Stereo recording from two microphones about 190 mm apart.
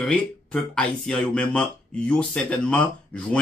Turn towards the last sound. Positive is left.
turn(degrees=5)  # may be behind; listen again after turning